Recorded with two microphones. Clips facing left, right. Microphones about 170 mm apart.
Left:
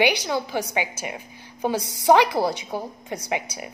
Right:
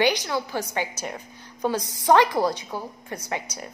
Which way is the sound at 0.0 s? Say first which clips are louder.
Left 1 dB; 10° left (ahead or behind).